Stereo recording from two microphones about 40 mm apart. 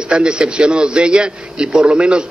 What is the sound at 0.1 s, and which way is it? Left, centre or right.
A man's voice, right.